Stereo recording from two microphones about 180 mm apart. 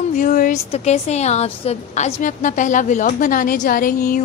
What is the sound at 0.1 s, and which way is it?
A woman's voice, 45° left (ahead or behind).